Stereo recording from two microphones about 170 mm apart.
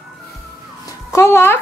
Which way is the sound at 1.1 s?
15° left (ahead or behind).